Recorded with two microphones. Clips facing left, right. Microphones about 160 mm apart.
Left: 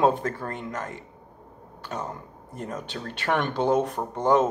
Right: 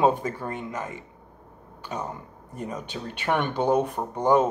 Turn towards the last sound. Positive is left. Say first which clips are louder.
# even
turn(degrees=-10)  # may be behind; listen again after turning